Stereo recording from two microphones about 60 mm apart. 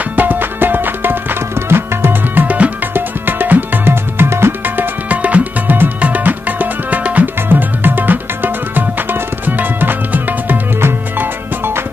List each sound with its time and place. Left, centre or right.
0.1 s music: right
2.4 s music: right
10.8 s music: right